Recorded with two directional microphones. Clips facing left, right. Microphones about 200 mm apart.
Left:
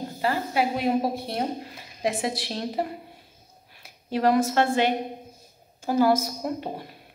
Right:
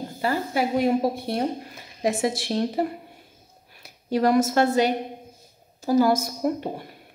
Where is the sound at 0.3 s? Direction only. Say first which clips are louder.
Right 2 dB; 45° right (ahead or behind).